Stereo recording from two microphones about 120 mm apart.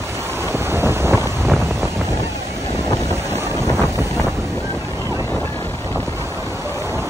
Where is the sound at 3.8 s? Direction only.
20° right (ahead or behind).